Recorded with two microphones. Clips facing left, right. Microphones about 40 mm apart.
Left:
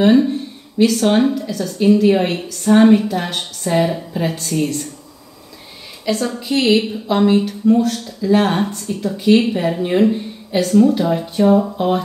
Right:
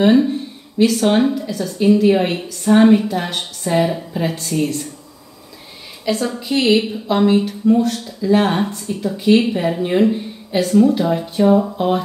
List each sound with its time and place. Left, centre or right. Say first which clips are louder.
0.0 s a woman's voice: left 1 dB; centre
6.0 s a woman's voice: even; centre